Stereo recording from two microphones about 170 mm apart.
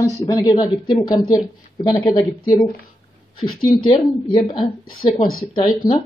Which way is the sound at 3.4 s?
30° left (ahead or behind).